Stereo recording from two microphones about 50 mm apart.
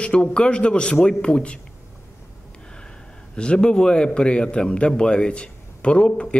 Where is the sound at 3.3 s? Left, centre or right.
Centre.